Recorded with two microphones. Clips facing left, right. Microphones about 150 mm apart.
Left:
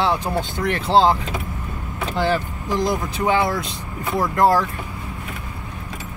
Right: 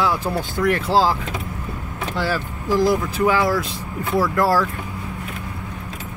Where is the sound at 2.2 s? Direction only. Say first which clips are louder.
Left 3 dB; 20° left (ahead or behind).